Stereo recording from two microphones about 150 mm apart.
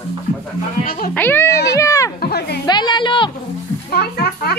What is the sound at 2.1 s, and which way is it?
Speech, 90° left.